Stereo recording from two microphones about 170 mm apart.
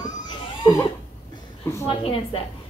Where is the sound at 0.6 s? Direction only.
20° left (ahead or behind).